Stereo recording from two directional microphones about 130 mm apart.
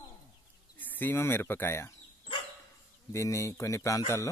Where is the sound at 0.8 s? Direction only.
15° left (ahead or behind).